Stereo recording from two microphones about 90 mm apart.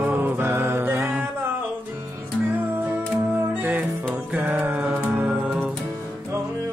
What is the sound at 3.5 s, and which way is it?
Music, 20° right (ahead or behind).